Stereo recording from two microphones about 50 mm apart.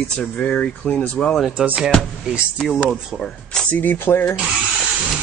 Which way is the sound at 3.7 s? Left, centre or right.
Left.